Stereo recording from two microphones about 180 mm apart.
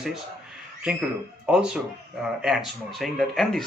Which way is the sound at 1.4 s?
5° right (ahead or behind).